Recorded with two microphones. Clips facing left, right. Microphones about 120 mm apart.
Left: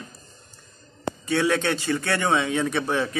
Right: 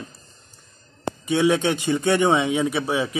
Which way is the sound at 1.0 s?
15° right (ahead or behind).